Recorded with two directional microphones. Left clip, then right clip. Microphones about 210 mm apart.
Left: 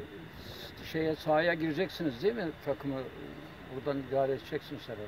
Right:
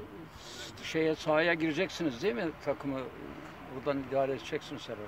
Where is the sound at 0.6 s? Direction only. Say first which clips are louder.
Right 3 dB; 25° left (ahead or behind).